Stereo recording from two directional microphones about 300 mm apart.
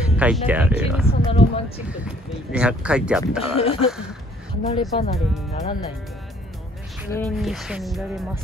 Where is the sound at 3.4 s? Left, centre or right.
Centre.